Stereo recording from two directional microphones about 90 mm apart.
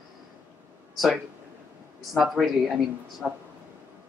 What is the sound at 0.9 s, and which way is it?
Speech, centre (ahead or behind).